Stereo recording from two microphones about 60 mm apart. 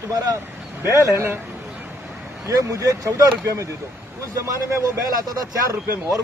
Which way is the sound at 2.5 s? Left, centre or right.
Right.